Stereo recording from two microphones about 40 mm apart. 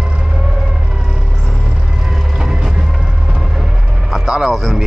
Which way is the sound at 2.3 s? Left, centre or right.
Centre.